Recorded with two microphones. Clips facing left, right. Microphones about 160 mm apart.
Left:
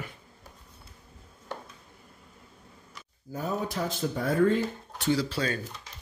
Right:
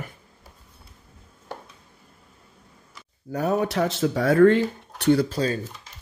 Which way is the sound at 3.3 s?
75° right (ahead or behind).